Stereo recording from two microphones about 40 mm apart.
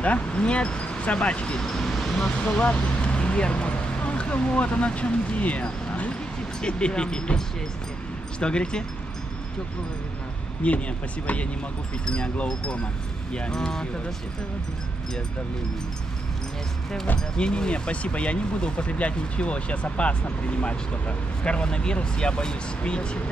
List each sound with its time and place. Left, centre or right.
0.0 s speech: left
1.7 s speech: centre
2.0 s vehicle: centre
2.3 s speech: left
8.4 s speech: left
10.6 s speech: left
12.1 s speech: left
17.4 s speech: left